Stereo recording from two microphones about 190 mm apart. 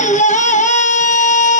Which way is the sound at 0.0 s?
40° left (ahead or behind).